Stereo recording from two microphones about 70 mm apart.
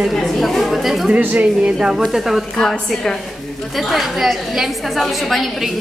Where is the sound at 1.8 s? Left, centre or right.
Centre.